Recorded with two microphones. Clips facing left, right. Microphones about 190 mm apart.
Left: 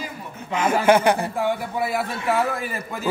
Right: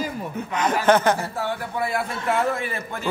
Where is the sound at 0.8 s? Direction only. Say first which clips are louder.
Left 1 dB; 10° left (ahead or behind).